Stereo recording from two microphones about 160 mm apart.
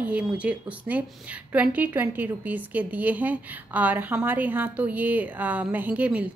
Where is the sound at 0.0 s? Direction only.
10° right (ahead or behind).